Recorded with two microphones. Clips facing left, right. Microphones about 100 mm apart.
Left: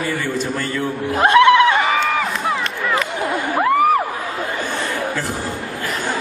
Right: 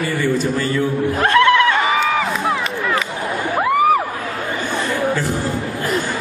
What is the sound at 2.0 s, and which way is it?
Run, centre (ahead or behind).